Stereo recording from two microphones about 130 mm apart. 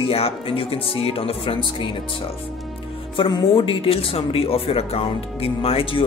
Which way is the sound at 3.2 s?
35° left (ahead or behind).